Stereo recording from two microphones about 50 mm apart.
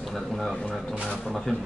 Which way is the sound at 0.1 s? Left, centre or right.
Centre.